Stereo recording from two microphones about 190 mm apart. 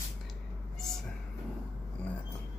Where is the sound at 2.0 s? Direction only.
5° left (ahead or behind).